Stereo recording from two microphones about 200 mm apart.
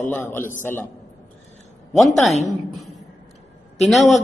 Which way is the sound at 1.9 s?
Centre (ahead or behind).